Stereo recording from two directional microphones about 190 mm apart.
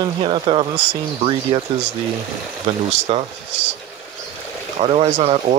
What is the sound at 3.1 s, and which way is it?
Speech, 30° right (ahead or behind).